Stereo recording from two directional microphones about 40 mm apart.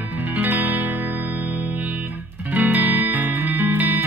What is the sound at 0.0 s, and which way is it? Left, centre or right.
Music, right.